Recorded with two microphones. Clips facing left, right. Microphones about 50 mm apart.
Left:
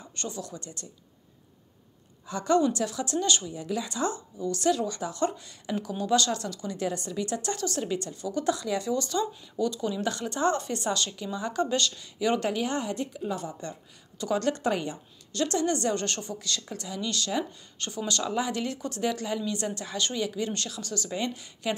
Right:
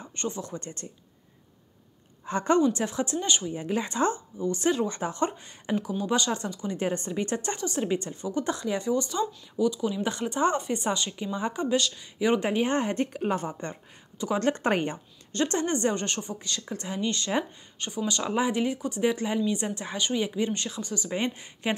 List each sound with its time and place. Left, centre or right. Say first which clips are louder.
0.0 s speech: right 3 dB; right
2.2 s a woman's voice: right 1 dB; right
5.8 s speech: left 2 dB; centre; by 7.5 s right
7.5 s speech: right 2 dB; centre
10.0 s speech: right 1 dB; right
11.6 s speech: right 1 dB; centre
12.2 s speech: right 2 dB; right
14.1 s speech: even; centre
14.4 s speech: right 2 dB; right; by 16.7 s centre
16.7 s speech: right 6 dB; right
17.7 s speech: right 1 dB; centre
21.1 s speech: right 3 dB; right